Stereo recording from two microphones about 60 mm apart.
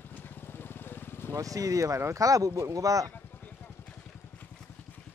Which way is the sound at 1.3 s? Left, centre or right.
Right.